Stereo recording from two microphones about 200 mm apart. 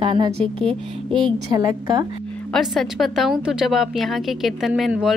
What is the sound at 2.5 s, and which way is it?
A woman's voice, centre (ahead or behind).